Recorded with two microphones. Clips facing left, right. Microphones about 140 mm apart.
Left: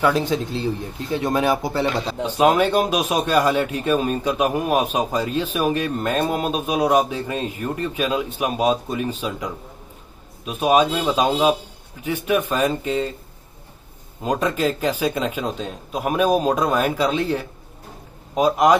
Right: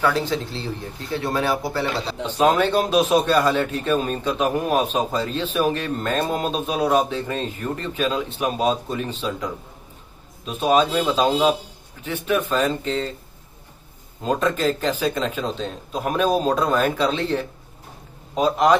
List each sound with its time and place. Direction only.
0.0 s a man's voice: 15° left (ahead or behind)
14.2 s a man's voice: 10° left (ahead or behind)